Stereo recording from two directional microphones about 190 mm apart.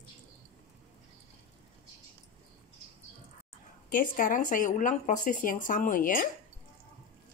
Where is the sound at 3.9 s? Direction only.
45° left (ahead or behind).